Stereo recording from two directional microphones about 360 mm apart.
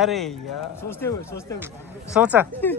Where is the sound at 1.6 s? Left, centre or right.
Centre.